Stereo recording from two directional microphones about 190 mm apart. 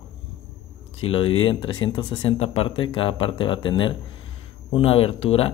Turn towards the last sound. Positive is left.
turn(degrees=30)  # may be behind; listen again after turning